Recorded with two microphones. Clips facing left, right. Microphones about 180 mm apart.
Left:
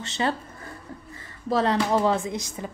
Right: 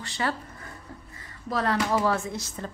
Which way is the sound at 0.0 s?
25° left (ahead or behind).